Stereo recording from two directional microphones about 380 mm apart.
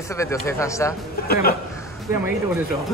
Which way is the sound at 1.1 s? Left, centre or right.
Left.